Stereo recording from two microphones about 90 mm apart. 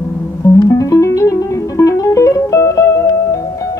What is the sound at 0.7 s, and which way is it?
Music, 35° left (ahead or behind).